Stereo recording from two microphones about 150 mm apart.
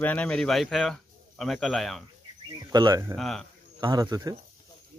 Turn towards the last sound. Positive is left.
turn(degrees=-25)  # may be behind; listen again after turning